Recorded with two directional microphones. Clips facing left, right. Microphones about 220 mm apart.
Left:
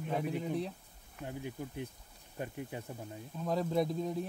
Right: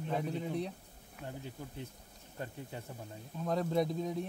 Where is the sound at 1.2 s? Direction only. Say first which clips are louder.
Left 4 dB; 15° left (ahead or behind).